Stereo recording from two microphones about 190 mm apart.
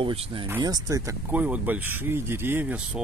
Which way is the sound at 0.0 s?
30° right (ahead or behind).